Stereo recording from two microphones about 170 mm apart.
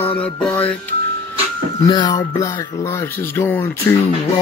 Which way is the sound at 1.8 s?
25° left (ahead or behind).